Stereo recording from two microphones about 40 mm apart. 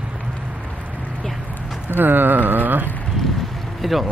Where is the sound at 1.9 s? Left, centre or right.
Right.